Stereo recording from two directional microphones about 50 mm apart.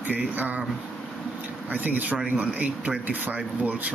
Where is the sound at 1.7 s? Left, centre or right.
Right.